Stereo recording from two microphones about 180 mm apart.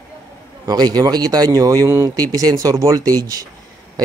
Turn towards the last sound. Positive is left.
turn(degrees=-20)  # may be behind; listen again after turning